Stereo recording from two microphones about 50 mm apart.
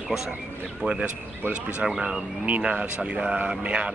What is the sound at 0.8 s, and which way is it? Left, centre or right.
Speech, centre.